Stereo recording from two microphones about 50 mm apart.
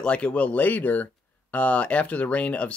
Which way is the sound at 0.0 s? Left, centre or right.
Left.